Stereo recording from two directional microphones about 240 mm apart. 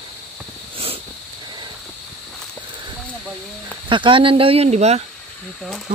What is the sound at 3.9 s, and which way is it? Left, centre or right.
Speech, right.